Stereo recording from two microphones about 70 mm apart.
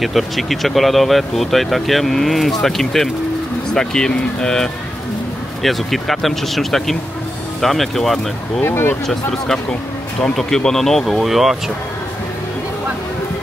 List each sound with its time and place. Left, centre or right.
0.0 s speech: centre
8.6 s speech: left
9.0 s speech: centre